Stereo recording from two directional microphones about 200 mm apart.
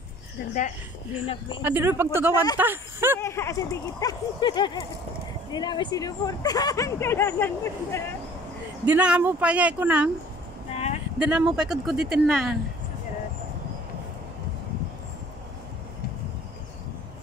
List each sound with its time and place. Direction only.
1.2 s speech: 30° left (ahead or behind)
1.6 s speech: 10° right (ahead or behind)
3.2 s speech: 15° left (ahead or behind)
8.8 s speech: 5° right (ahead or behind)
10.7 s a sound: 30° left (ahead or behind)
11.1 s speech: 5° right (ahead or behind)